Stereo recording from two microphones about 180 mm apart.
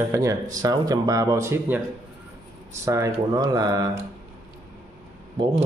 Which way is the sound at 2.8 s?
15° right (ahead or behind).